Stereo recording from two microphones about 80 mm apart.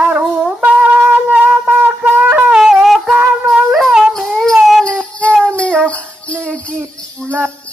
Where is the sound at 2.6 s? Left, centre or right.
Centre.